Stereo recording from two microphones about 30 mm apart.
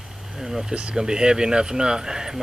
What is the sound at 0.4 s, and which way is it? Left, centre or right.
Speech, centre.